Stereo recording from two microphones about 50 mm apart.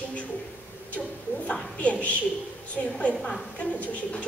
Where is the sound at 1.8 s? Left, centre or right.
Left.